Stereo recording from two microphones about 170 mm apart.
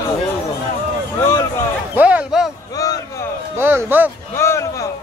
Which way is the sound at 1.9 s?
10° right (ahead or behind).